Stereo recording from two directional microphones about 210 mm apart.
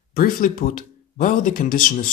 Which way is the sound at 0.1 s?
40° left (ahead or behind).